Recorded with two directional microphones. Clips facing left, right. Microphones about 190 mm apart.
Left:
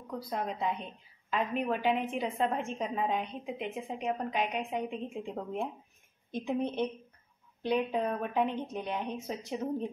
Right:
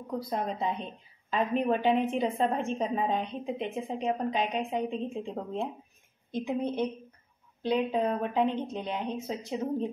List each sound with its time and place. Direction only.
0.1 s a woman's voice: 25° right (ahead or behind)
6.3 s a woman's voice: 15° right (ahead or behind)